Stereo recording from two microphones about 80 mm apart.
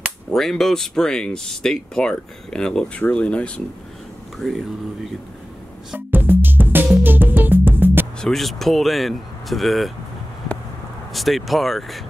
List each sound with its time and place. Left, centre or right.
0.3 s speech: centre
4.4 s speech: centre
5.9 s music: right
8.2 s speech: centre
11.1 s speech: centre